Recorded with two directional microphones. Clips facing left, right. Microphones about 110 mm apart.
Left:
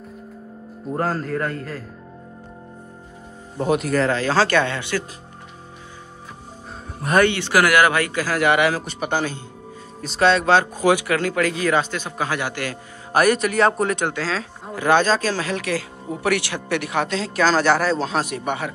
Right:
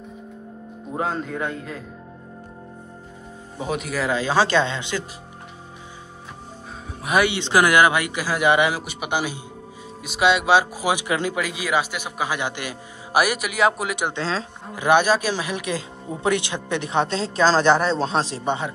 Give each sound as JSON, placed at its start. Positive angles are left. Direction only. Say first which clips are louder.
{"t": 0.9, "sound": "a man's voice", "louder": "left 2 dB", "side_deg": 0}
{"t": 3.5, "sound": "a man's voice", "louder": "left 6 dB", "side_deg": 0}
{"t": 7.0, "sound": "speech", "louder": "left 3 dB", "side_deg": -5}
{"t": 7.3, "sound": "a man's voice", "louder": "even", "side_deg": -20}
{"t": 14.0, "sound": "speech", "louder": "left 1 dB", "side_deg": -25}
{"t": 14.9, "sound": "speech", "louder": "even", "side_deg": -15}